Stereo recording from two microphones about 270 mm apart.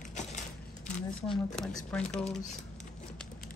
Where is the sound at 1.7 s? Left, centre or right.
Centre.